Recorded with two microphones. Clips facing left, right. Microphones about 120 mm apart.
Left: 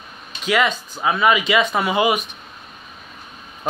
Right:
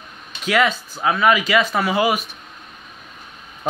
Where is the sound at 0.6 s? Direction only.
10° right (ahead or behind).